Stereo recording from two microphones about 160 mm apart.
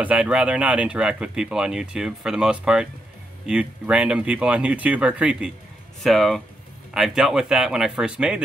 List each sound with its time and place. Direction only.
0.0 s speech: 5° right (ahead or behind)